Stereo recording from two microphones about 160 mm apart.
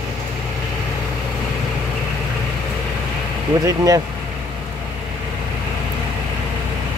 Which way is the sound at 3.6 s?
20° right (ahead or behind).